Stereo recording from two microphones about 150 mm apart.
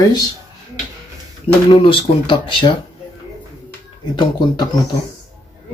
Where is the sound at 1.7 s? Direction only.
35° left (ahead or behind).